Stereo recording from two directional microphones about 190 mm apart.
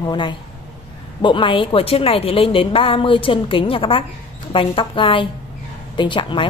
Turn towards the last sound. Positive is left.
turn(degrees=25)  # may be behind; listen again after turning